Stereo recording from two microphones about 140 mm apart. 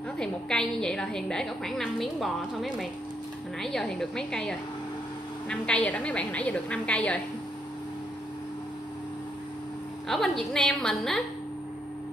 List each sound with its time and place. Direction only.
0.2 s a woman's voice: 5° left (ahead or behind)
10.0 s a woman's voice: centre (ahead or behind)